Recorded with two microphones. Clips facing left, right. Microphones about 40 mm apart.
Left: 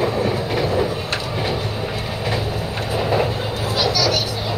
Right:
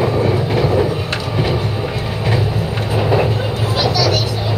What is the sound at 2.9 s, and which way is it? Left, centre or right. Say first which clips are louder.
Vehicle: right 4 dB; centre.